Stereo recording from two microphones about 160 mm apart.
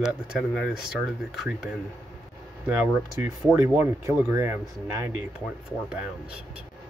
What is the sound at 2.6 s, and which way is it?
Speech, 15° right (ahead or behind).